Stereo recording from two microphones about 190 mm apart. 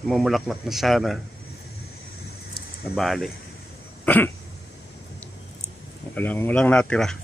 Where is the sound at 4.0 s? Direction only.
10° left (ahead or behind).